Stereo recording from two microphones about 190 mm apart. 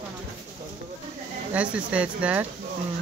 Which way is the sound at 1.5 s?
5° right (ahead or behind).